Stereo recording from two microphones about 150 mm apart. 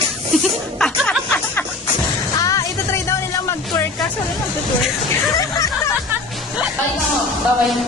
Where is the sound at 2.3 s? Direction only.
20° left (ahead or behind).